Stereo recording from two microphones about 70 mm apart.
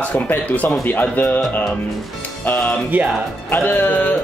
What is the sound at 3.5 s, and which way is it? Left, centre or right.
Speech, left.